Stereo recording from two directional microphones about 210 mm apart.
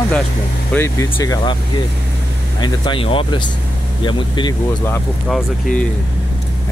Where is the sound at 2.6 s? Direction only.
20° left (ahead or behind).